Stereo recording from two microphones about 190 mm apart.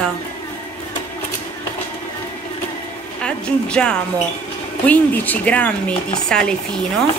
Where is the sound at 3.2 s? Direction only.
5° left (ahead or behind).